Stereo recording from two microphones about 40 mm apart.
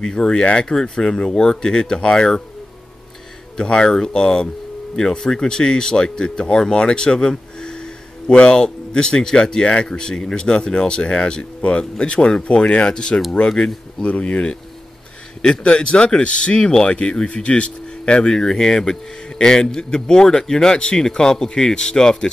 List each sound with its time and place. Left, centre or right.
0.0 s speech: centre
3.5 s speech: left
14.0 s speech: left
15.6 s speech: left